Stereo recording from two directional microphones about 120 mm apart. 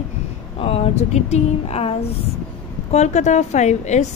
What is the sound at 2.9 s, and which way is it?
A woman's voice, 70° left (ahead or behind).